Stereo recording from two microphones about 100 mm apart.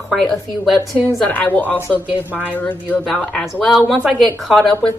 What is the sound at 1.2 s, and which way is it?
A woman's voice, 15° left (ahead or behind).